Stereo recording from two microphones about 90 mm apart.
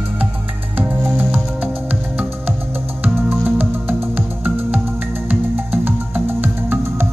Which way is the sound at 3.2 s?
20° right (ahead or behind).